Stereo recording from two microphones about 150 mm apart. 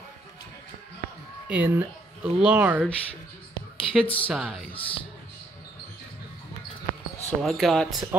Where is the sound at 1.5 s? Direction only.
10° right (ahead or behind).